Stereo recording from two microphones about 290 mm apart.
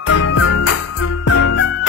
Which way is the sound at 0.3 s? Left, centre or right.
Left.